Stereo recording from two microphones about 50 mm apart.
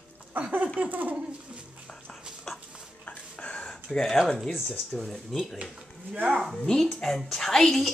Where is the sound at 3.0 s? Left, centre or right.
Left.